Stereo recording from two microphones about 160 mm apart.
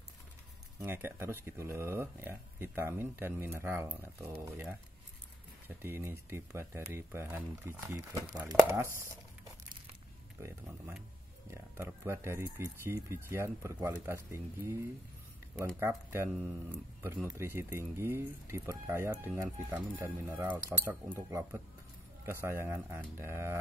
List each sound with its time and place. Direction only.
0.7 s speech: 15° right (ahead or behind)
10.4 s speech: 10° right (ahead or behind)